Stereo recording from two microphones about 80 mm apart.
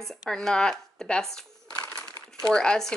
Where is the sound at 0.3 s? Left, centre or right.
Centre.